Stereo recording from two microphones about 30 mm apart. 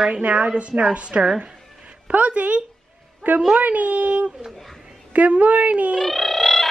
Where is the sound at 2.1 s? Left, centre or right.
Right.